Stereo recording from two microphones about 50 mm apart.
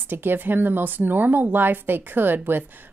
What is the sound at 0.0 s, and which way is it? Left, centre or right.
Speech, right.